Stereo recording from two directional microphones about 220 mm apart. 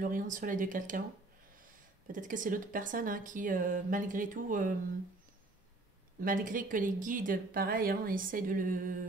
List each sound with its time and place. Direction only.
0.0 s speech: 40° right (ahead or behind)
2.1 s speech: 35° right (ahead or behind)
6.2 s speech: 35° right (ahead or behind)